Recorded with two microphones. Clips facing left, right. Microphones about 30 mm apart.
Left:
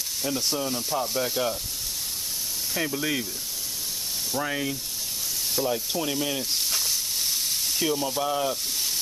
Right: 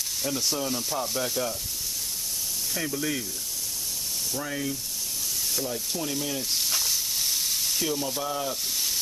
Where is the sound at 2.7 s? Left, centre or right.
Centre.